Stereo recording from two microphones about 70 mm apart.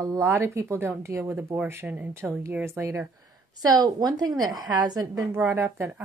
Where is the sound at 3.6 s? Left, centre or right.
Right.